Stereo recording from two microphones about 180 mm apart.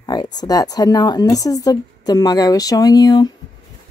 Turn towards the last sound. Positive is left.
turn(degrees=20)  # may be behind; listen again after turning